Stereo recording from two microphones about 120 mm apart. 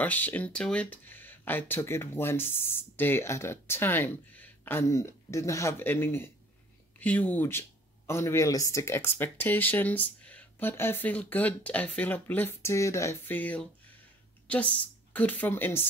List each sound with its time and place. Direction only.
0.0 s a woman's voice: 15° left (ahead or behind)